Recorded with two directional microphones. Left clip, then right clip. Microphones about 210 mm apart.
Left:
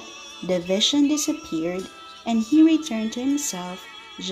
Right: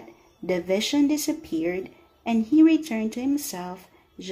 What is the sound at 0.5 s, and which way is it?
Speech, 20° left (ahead or behind).